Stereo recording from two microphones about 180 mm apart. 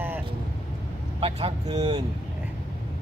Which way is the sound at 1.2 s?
35° right (ahead or behind).